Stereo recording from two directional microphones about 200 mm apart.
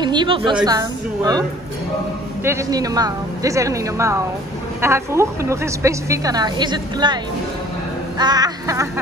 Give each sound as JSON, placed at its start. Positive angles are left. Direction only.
{"t": 0.0, "sound": "a woman's voice", "side_deg": -20}
{"t": 2.4, "sound": "a woman's voice", "side_deg": -15}
{"t": 8.2, "sound": "a woman's voice", "side_deg": -20}